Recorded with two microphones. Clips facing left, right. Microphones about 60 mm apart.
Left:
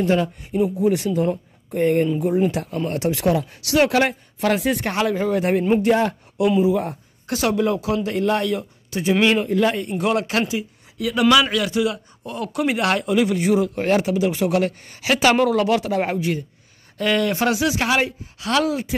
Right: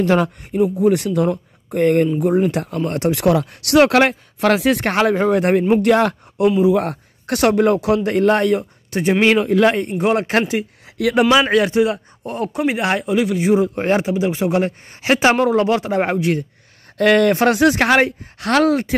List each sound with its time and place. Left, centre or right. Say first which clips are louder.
0.5 s speech: right 4 dB; right
3.3 s speech: right 5 dB; right
5.8 s speech: right 3 dB; right
9.2 s speech: right 5 dB; right
9.9 s a man's voice: right 4 dB; right
10.5 s speech: right 4 dB; right
11.2 s a man's voice: left 1 dB; right
12.6 s speech: even; centre
13.6 s a man's voice: right 2 dB; right
16.2 s speech: right 5 dB; right
17.3 s speech: right 6 dB; right